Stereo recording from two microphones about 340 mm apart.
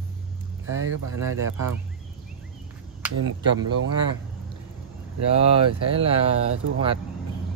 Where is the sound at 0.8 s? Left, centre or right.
Right.